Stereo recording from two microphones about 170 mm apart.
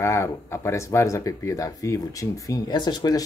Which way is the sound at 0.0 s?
15° left (ahead or behind).